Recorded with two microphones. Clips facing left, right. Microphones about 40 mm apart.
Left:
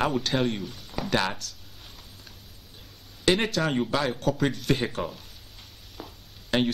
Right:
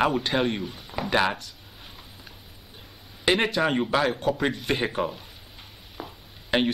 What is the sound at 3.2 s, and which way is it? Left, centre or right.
A man's voice, centre.